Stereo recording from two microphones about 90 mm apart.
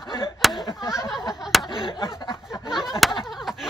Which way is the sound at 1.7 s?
75° left (ahead or behind).